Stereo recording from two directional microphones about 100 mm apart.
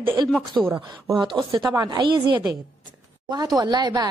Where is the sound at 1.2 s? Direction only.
50° right (ahead or behind).